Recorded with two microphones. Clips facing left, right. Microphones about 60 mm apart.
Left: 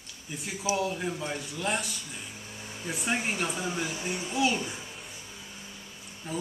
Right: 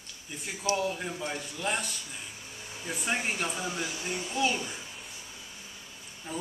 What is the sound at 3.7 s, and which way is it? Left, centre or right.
Speech, left.